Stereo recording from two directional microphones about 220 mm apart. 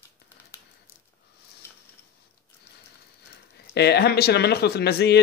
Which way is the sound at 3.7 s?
50° left (ahead or behind).